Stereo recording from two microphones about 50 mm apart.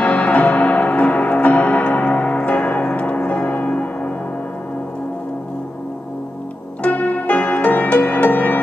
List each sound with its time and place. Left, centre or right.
0.0 s music: left
6.8 s music: left